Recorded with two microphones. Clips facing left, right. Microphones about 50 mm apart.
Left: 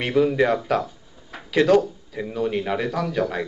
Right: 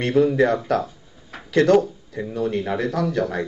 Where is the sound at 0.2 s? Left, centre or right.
Left.